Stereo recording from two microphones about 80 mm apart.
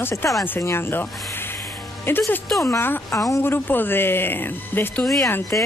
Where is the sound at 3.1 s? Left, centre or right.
Left.